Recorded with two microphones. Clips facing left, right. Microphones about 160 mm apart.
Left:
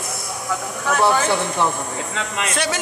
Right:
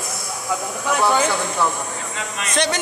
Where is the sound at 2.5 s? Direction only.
5° left (ahead or behind).